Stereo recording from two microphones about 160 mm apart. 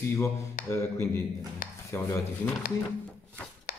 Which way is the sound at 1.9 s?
15° left (ahead or behind).